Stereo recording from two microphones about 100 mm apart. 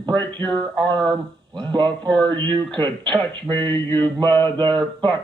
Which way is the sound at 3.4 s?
25° left (ahead or behind).